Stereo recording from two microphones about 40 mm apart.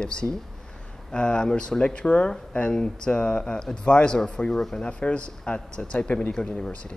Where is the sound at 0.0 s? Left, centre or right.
Left.